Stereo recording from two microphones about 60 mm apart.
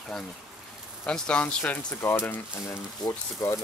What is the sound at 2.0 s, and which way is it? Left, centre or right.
Speech, left.